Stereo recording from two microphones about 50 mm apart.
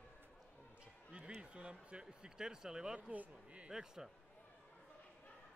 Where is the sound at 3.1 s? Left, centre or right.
Right.